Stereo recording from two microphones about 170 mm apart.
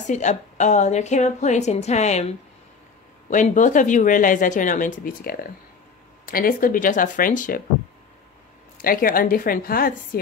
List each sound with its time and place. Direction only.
0.0 s a woman's voice: 45° left (ahead or behind)
8.8 s a woman's voice: 55° left (ahead or behind)